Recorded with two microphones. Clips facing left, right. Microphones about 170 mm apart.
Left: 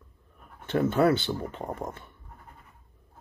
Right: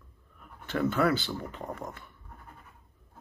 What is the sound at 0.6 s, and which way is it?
Speech, 20° left (ahead or behind).